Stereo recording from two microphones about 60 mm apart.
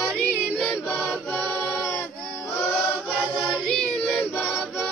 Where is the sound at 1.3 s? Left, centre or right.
Centre.